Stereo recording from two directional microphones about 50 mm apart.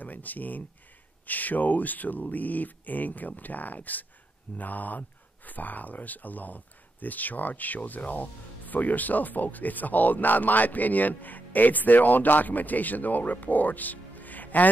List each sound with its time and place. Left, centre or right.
0.0 s speech: left